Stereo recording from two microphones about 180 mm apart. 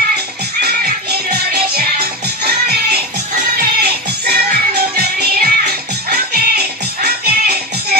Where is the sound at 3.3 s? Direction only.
60° right (ahead or behind).